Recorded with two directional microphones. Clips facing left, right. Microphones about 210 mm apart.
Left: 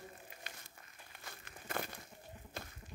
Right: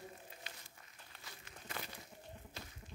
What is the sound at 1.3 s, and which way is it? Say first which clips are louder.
Crumpling: left 5 dB; 50° left (ahead or behind).